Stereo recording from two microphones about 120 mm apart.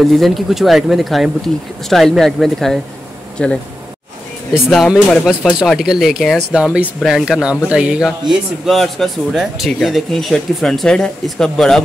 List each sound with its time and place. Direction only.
0.0 s speech: centre (ahead or behind)
4.6 s speech: centre (ahead or behind)